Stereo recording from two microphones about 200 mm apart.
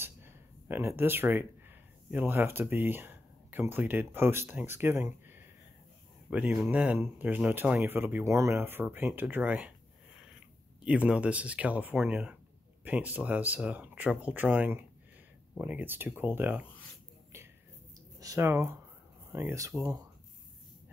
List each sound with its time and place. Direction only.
0.0 s a sound: 10° right (ahead or behind)
3.7 s speech: 10° right (ahead or behind)
18.2 s speech: 15° right (ahead or behind)